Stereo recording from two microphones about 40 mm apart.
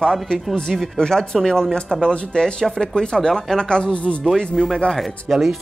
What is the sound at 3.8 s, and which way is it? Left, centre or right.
Speech, left.